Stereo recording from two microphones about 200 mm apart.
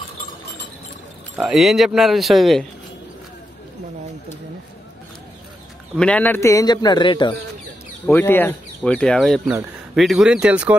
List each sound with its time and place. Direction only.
1.4 s speech: centre (ahead or behind)
5.9 s a man's voice: 5° left (ahead or behind); by 7.3 s 25° left (ahead or behind)
8.1 s speech: 10° left (ahead or behind); by 10.8 s 5° right (ahead or behind)